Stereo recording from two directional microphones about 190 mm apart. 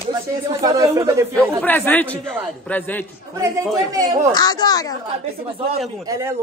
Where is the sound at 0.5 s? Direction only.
20° right (ahead or behind).